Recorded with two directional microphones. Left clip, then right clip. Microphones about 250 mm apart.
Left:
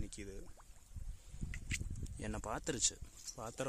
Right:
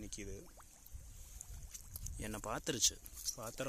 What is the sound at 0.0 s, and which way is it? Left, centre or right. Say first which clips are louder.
Pour: right 1 dB; centre.